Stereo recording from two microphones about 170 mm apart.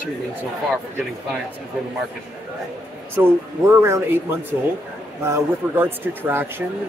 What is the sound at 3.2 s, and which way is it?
Speech, 15° right (ahead or behind).